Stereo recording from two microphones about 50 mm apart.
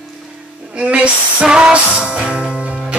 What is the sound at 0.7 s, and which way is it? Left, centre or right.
Music, right.